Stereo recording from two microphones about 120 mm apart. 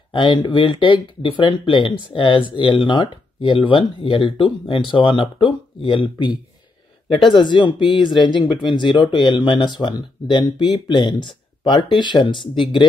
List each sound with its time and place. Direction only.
0.1 s speech: 45° left (ahead or behind)